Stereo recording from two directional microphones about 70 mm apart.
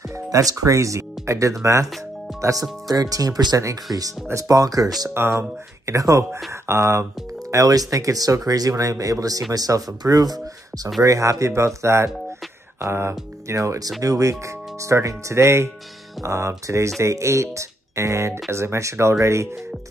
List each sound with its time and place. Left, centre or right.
0.1 s speech: right
2.9 s speech: right
3.9 s speech: right
5.1 s speech: right
7.5 s speech: right
11.0 s speech: right